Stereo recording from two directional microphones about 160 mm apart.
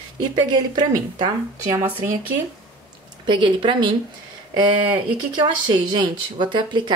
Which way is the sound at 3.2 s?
30° right (ahead or behind).